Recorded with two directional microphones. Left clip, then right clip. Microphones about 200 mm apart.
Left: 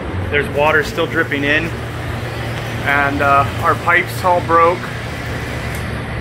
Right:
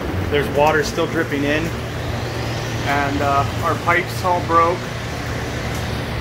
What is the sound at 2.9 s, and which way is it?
Speech, 5° left (ahead or behind).